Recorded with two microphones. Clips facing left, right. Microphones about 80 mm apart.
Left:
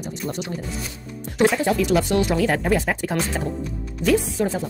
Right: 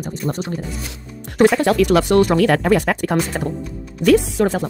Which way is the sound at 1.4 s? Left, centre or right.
Right.